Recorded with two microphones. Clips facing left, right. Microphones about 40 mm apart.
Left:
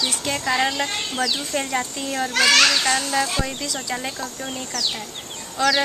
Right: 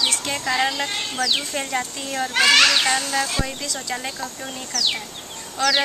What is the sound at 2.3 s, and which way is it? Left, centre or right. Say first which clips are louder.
A child's voice: right 1 dB; centre.